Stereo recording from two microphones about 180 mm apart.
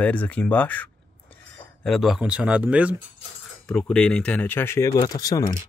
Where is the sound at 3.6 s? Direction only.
5° left (ahead or behind); by 5.4 s 20° left (ahead or behind).